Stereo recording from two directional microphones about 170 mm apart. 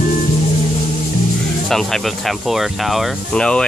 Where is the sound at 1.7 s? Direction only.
Centre (ahead or behind).